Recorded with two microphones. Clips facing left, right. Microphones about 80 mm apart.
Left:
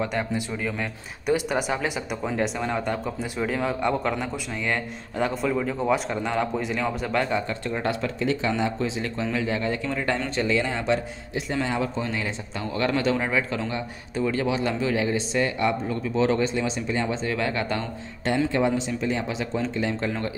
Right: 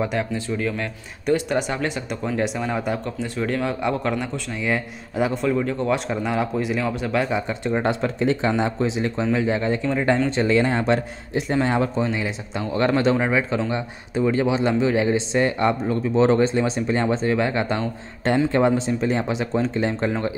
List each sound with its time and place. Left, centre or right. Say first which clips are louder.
0.3 s a man's voice: right 3 dB; centre
3.2 s a man's voice: right 2 dB; centre
7.7 s a man's voice: right 5 dB; right
10.3 s speech: right 5 dB; right
12.0 s a man's voice: right 5 dB; right
13.1 s a man's voice: right 4 dB; right
17.3 s a man's voice: right 5 dB; right
18.2 s speech: right 4 dB; right